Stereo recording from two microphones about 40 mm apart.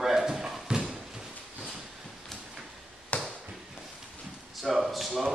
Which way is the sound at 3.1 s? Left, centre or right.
Left.